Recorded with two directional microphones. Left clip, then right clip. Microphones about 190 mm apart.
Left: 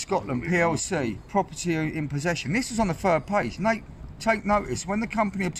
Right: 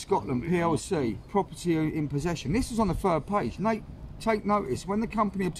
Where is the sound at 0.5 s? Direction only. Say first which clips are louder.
Left 4 dB; 20° left (ahead or behind).